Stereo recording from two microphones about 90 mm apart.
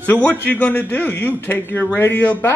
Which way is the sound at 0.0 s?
15° left (ahead or behind).